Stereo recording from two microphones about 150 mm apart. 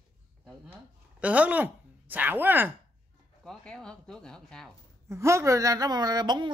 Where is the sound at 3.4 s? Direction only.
5° left (ahead or behind).